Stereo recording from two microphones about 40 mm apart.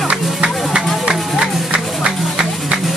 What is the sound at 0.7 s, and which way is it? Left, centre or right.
Music, centre.